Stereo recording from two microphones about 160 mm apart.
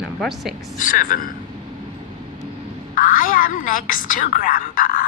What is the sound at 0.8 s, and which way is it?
Speech, 60° left (ahead or behind).